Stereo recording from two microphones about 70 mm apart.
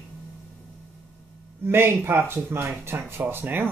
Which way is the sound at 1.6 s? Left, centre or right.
Right.